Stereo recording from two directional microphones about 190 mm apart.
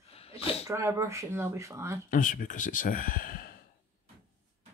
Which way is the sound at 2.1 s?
45° left (ahead or behind).